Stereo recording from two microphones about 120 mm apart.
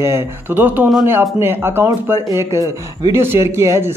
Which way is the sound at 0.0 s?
20° right (ahead or behind).